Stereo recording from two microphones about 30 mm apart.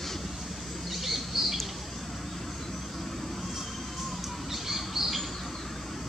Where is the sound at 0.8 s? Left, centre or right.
Centre.